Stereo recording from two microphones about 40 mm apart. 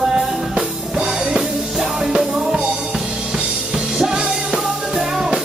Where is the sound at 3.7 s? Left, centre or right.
Centre.